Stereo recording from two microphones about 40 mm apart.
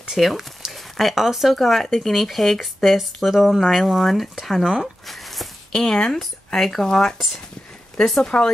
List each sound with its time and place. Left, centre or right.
0.2 s speech: centre
5.0 s a sound: centre
5.7 s speech: centre
8.2 s speech: left